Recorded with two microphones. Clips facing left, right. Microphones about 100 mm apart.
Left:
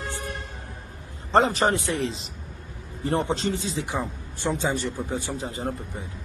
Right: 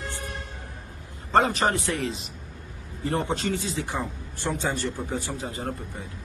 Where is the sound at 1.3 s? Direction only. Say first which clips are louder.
Left 1 dB; 30° left (ahead or behind).